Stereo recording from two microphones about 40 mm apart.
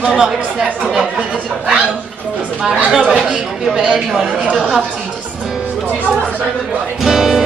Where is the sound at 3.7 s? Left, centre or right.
Right.